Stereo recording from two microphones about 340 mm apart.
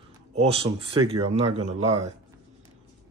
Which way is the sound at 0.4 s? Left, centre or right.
Centre.